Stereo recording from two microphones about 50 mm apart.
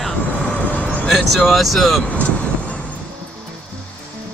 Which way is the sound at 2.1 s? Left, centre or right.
Left.